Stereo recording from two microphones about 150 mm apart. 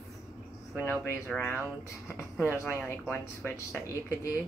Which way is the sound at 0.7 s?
10° left (ahead or behind).